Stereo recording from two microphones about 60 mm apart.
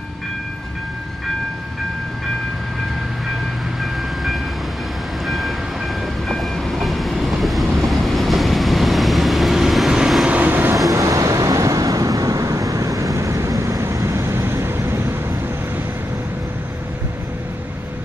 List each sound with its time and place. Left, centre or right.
3.8 s train: centre
10.2 s vehicle: right
10.9 s vehicle: right